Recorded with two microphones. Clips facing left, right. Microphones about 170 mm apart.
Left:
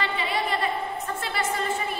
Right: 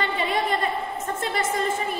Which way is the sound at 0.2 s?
45° right (ahead or behind).